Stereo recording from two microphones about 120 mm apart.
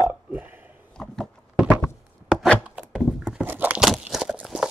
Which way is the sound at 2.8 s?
5° right (ahead or behind).